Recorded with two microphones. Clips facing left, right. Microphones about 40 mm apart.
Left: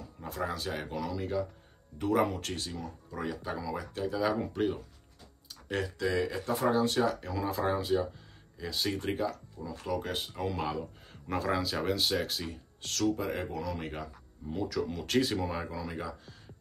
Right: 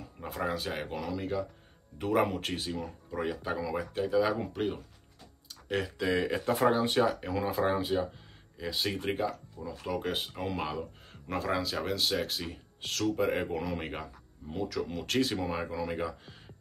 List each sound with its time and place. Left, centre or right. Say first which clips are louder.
0.3 s speech: right 1 dB; centre
6.1 s speech: right 5 dB; right
14.5 s speech: left 1 dB; centre